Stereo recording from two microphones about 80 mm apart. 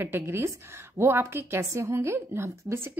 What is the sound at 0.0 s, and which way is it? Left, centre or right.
A woman's voice, right.